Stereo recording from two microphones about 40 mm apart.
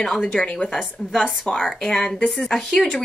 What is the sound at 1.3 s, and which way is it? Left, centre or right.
Speech, left.